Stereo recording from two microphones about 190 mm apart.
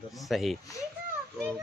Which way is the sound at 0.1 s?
Centre (ahead or behind).